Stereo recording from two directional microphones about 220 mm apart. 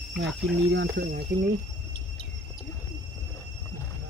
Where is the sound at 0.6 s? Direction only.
50° right (ahead or behind).